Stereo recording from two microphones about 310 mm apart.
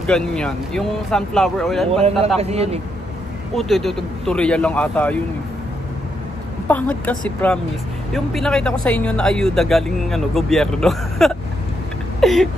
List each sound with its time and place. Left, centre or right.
0.0 s speech: centre
1.9 s speech: centre
3.5 s speech: centre
6.7 s speech: centre
12.2 s a sound: centre